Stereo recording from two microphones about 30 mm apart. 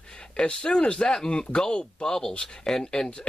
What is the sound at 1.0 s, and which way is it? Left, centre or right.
Speech, centre.